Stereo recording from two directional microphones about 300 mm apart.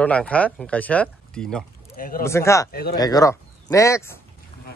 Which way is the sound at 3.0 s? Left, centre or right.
Centre.